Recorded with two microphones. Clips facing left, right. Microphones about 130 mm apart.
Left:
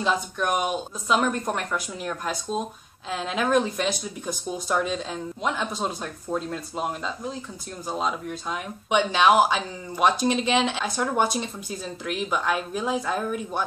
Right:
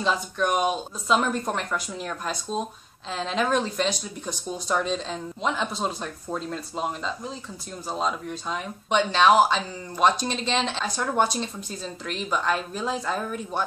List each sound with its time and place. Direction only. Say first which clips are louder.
0.0 s speech: even; centre (ahead or behind)